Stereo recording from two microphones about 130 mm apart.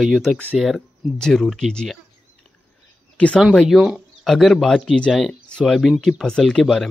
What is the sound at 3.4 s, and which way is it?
Speech, centre (ahead or behind).